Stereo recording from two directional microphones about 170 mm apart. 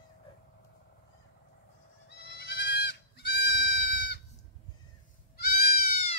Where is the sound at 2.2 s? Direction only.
80° left.